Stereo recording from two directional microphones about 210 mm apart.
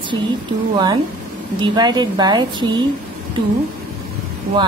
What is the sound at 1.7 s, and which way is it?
A woman's voice, 20° right (ahead or behind).